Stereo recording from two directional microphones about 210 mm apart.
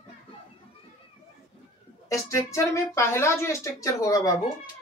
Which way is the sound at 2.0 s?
15° left (ahead or behind).